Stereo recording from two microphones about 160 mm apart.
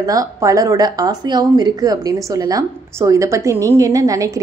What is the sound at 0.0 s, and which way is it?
Speech, 20° right (ahead or behind).